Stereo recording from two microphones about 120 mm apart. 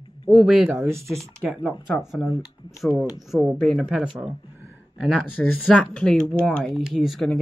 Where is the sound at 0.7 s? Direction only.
20° right (ahead or behind).